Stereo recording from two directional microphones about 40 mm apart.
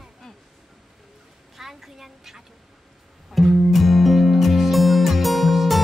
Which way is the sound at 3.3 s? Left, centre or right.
Centre.